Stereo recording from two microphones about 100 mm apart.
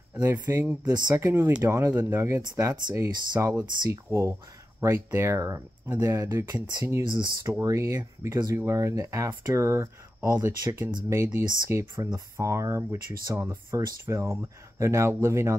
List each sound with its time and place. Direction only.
0.2 s speech: 25° right (ahead or behind)
7.1 s speech: 45° right (ahead or behind)
7.4 s speech: 30° right (ahead or behind)